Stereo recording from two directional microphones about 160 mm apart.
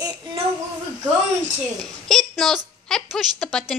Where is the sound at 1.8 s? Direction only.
Centre (ahead or behind).